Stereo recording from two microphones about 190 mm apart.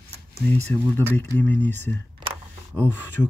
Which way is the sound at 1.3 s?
10° left (ahead or behind).